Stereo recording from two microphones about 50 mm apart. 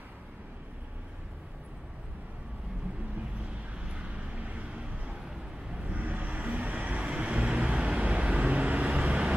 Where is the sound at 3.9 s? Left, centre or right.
Right.